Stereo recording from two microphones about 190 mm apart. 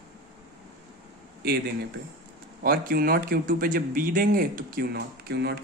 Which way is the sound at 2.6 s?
50° right (ahead or behind).